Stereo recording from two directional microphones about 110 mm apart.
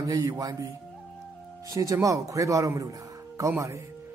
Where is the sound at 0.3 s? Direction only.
30° right (ahead or behind).